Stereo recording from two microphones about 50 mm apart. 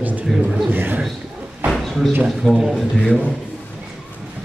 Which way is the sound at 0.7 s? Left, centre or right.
Right.